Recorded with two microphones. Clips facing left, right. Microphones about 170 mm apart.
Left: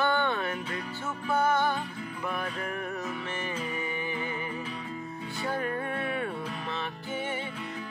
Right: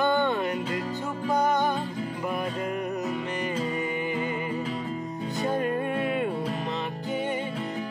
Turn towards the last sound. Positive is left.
turn(degrees=-20)  # may be behind; listen again after turning